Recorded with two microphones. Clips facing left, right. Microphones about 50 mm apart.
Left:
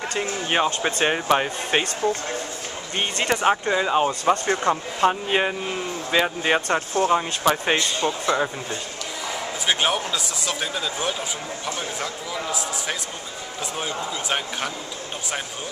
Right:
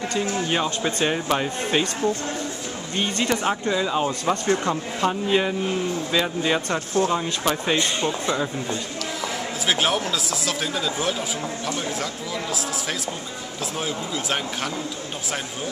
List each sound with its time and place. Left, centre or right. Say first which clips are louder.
0.2 s speech: left 2 dB; left
3.0 s speech: left 1 dB; left; by 8.2 s centre
9.7 s speech: even; centre
13.7 s speech: even; centre